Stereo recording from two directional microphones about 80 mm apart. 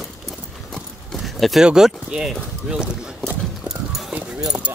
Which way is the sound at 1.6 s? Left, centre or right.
Centre.